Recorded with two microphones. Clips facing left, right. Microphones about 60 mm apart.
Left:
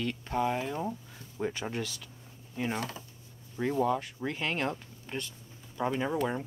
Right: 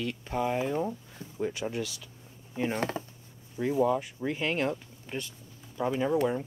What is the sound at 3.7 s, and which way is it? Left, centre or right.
Speech, centre.